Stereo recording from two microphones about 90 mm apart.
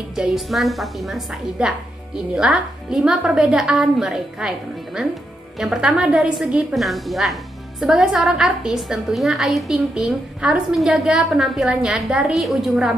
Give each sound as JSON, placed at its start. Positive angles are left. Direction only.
{"t": 0.1, "sound": "a woman's voice", "side_deg": -5}